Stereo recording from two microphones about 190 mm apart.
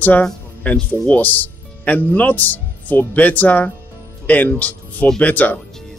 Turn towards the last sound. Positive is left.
turn(degrees=10)  # may be behind; listen again after turning